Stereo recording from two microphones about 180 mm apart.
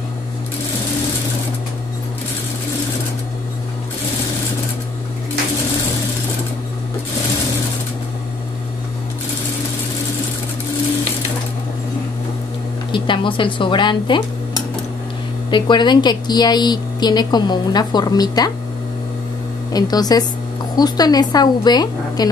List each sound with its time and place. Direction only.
12.9 s a woman's voice: 25° left (ahead or behind)
19.7 s a woman's voice: 20° left (ahead or behind)